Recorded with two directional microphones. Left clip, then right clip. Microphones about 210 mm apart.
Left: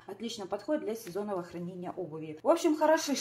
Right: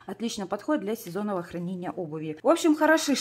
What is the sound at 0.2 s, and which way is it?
Speech, 50° right (ahead or behind).